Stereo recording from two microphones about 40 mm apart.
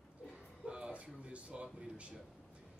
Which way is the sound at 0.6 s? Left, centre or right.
Right.